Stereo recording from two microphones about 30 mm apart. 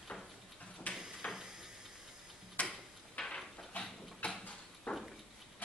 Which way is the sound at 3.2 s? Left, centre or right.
Left.